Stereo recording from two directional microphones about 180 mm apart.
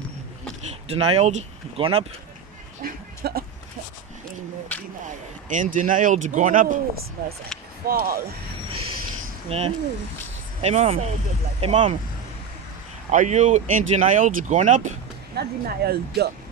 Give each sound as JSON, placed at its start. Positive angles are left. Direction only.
{"t": 0.8, "sound": "speech", "side_deg": -35}
{"t": 2.8, "sound": "a sound", "side_deg": -55}
{"t": 4.7, "sound": "speech", "side_deg": 10}
{"t": 5.0, "sound": "speech", "side_deg": -45}
{"t": 9.5, "sound": "speech", "side_deg": -35}
{"t": 13.1, "sound": "speech", "side_deg": -45}
{"t": 15.3, "sound": "speech", "side_deg": -60}